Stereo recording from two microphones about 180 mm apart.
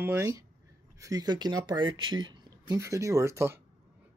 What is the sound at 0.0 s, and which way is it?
Speech, 15° right (ahead or behind).